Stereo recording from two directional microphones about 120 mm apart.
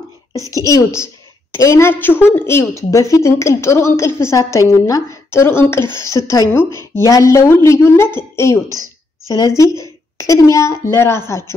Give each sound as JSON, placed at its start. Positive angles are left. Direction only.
{"t": 0.3, "sound": "a woman's voice", "side_deg": 25}
{"t": 8.6, "sound": "speech", "side_deg": -30}
{"t": 9.3, "sound": "a woman's voice", "side_deg": 30}